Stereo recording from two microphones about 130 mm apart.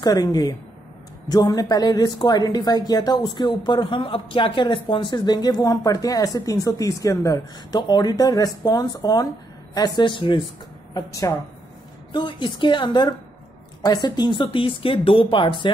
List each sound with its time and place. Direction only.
0.0 s speech: 30° left (ahead or behind)
10.9 s a woman's voice: 25° left (ahead or behind)
12.1 s speech: 40° left (ahead or behind)